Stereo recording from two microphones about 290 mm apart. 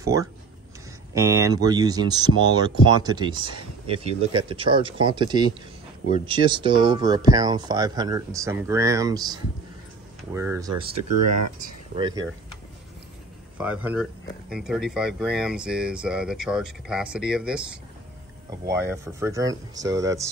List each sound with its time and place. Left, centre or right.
0.0 s speech: centre
13.6 s speech: centre
18.7 s speech: centre